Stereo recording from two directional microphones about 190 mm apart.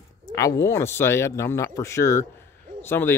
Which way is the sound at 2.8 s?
10° left (ahead or behind).